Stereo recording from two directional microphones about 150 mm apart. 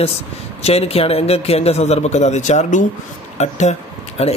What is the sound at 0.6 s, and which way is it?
Speech, 40° left (ahead or behind).